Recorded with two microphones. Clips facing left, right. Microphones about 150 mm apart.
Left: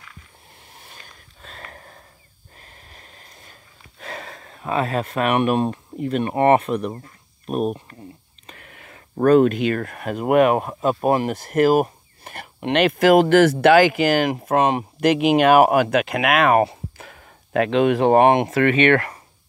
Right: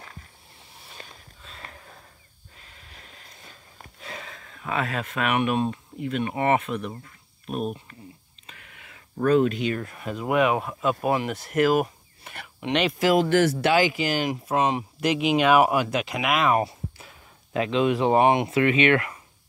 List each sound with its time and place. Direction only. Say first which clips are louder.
1.4 s a sound: left 4 dB; 50° left (ahead or behind)
2.6 s wheeze: left 2 dB; 45° left (ahead or behind)
4.0 s speech: left 5 dB; 45° left (ahead or behind)